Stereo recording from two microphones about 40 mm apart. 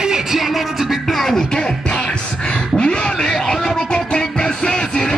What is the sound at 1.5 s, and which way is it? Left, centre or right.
Music, left.